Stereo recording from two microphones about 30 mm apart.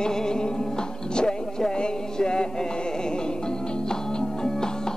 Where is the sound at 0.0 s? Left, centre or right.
Left.